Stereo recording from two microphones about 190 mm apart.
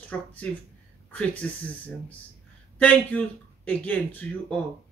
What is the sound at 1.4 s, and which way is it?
Speech, 10° left (ahead or behind).